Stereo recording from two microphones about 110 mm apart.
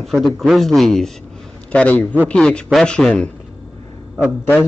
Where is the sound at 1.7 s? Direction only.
15° left (ahead or behind).